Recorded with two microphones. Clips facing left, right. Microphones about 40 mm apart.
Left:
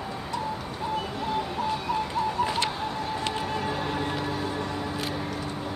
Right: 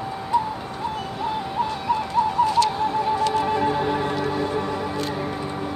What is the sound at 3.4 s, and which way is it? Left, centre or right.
Music, centre.